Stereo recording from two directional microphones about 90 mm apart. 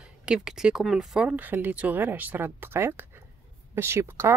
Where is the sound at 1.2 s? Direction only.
20° right (ahead or behind).